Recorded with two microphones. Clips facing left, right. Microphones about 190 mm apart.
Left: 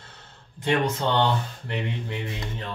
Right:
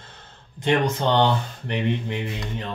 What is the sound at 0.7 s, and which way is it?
Speech, 15° right (ahead or behind).